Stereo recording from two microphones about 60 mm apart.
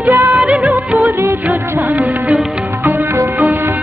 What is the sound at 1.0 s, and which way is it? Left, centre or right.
Music of bollywood, right.